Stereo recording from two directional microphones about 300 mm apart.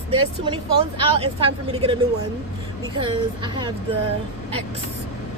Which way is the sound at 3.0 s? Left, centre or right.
Centre.